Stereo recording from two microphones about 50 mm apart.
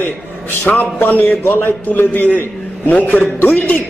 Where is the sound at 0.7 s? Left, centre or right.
Left.